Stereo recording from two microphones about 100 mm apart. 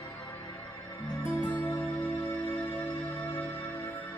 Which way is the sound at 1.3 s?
20° left (ahead or behind).